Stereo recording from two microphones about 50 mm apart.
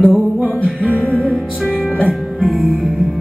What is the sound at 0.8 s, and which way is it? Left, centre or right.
Music, left.